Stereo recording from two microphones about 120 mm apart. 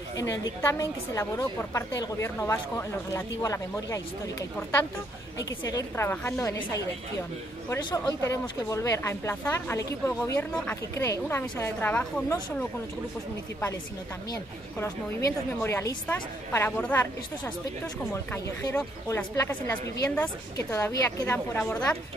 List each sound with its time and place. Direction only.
0.2 s speech: 25° left (ahead or behind)
6.4 s speech: 30° left (ahead or behind)
10.5 s a woman's voice: 10° left (ahead or behind)
11.0 s a woman's voice: 20° left (ahead or behind)
14.8 s a woman's voice: 20° left (ahead or behind)
19.0 s a woman's voice: 20° left (ahead or behind)